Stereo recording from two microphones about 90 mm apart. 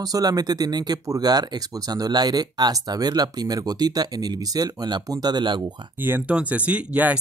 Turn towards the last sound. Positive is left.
turn(degrees=-15)  # may be behind; listen again after turning